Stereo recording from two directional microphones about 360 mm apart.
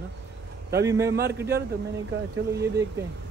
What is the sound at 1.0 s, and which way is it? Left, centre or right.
Speech, right.